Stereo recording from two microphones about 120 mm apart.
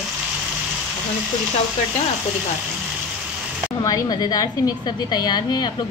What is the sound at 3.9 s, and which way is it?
A woman's voice, 35° left (ahead or behind).